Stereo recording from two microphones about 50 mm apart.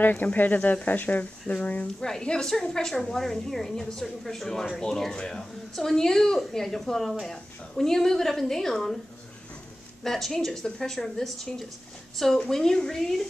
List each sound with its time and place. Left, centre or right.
0.0 s speech: left
2.0 s speech: centre
10.0 s speech: centre